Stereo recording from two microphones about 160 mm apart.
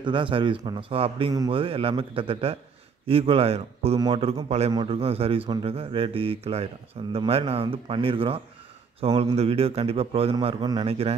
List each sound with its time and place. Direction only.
0.0 s speech: 30° right (ahead or behind)